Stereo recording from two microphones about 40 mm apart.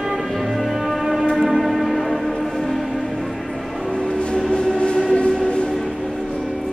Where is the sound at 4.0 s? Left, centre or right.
Left.